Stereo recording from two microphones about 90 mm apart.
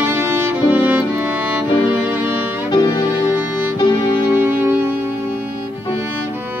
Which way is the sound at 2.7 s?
75° left (ahead or behind).